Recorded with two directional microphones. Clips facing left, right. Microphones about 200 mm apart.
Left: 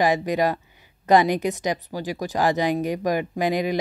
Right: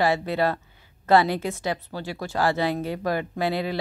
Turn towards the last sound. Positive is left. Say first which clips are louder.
# left 3 dB
turn(degrees=15)  # may be behind; listen again after turning